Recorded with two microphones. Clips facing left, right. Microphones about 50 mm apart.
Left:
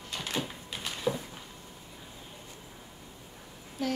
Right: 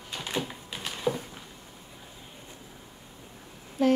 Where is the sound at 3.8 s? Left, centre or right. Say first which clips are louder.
Right 9 dB; right.